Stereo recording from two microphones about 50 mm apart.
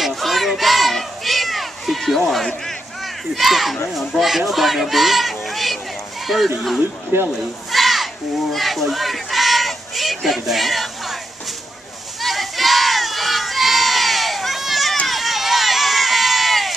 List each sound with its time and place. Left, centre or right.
0.0 s children playing: centre
4.2 s speech: centre
7.1 s speech: right
7.7 s a sound: centre
12.2 s crowd: centre
15.0 s run: centre